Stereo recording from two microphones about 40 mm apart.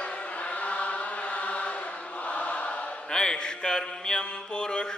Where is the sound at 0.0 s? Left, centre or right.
Left.